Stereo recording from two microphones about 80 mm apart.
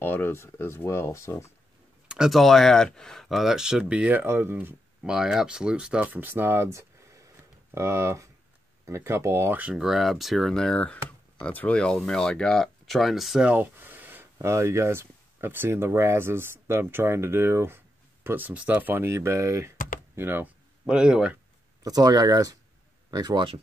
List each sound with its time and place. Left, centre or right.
0.0 s speech: left
2.0 s speech: centre; by 4.7 s right
5.0 s speech: centre; by 9.5 s right
9.5 s speech: centre
9.8 s speech: centre
13.4 s a sound: right
14.5 s speech: right
19.0 s speech: right
20.2 s speech: right
20.8 s speech: centre
21.8 s speech: right